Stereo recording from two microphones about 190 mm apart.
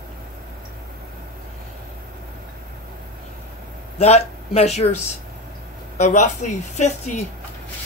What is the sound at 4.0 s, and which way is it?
A woman's voice, 35° left (ahead or behind).